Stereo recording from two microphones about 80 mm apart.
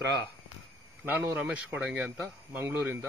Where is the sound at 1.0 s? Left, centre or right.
Right.